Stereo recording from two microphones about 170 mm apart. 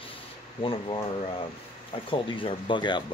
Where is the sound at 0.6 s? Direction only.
30° left (ahead or behind).